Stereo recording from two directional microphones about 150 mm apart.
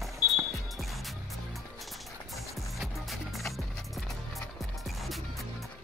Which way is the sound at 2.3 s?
Centre (ahead or behind).